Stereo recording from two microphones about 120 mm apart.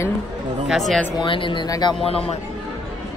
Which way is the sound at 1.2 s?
45° left (ahead or behind).